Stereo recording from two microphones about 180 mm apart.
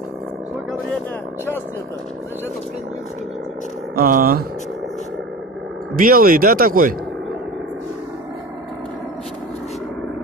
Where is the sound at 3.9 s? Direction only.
55° right (ahead or behind).